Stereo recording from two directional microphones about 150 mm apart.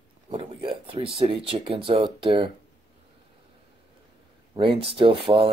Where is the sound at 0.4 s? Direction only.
35° right (ahead or behind).